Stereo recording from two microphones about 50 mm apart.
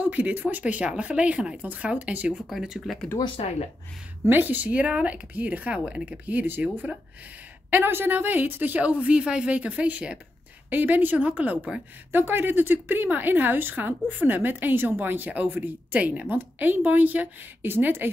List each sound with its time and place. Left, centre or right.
0.0 s a woman's voice: right
2.5 s speech: centre
4.3 s speech: right
7.7 s a woman's voice: right
10.7 s speech: right
12.1 s a woman's voice: right